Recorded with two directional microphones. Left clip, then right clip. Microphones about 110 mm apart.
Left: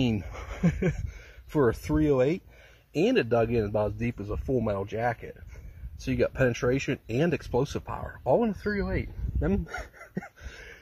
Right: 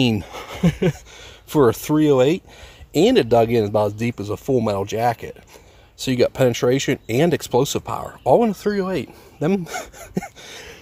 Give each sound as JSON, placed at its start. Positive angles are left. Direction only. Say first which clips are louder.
{"t": 0.0, "sound": "speech", "louder": "right 9 dB", "side_deg": -35}